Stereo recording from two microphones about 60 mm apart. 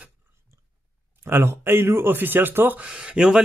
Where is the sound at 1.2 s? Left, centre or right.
Right.